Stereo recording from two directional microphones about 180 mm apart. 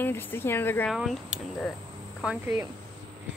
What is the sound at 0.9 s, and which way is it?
Speech, centre (ahead or behind).